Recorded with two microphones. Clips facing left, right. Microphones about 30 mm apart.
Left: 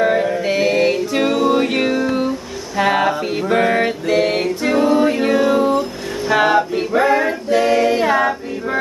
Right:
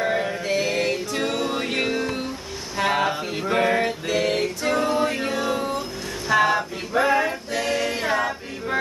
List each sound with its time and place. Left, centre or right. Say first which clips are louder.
0.0 s music: left 8 dB; centre
2.8 s mantra: left 6 dB; centre
3.7 s music: left 6 dB; left
5.2 s a sound: left 10 dB; left
7.5 s music: left 12 dB; left